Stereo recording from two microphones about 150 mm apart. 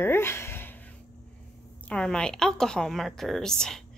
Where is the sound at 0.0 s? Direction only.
15° left (ahead or behind).